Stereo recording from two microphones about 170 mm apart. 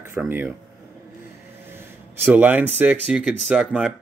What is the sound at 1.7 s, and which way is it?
Speech, 15° right (ahead or behind).